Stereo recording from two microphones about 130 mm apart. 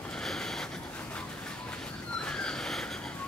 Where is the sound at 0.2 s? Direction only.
5° left (ahead or behind).